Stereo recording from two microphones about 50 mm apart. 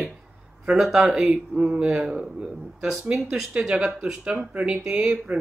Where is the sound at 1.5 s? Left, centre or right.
Right.